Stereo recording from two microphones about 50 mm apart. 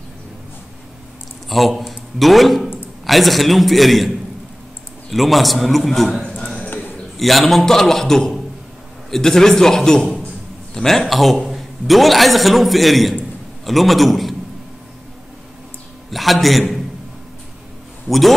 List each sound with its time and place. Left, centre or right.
1.8 s a man's voice: centre
5.1 s a man's voice: centre
6.3 s a sound: centre
6.7 s a sound: left
7.2 s a man's voice: centre
16.1 s a man's voice: centre